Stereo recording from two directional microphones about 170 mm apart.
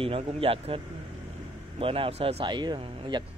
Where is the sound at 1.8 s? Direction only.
35° right (ahead or behind).